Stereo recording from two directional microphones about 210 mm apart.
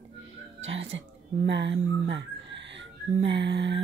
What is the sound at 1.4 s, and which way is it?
Speech, 55° right (ahead or behind).